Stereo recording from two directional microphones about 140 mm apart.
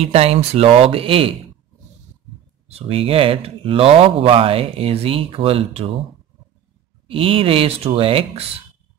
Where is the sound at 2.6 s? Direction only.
45° right (ahead or behind).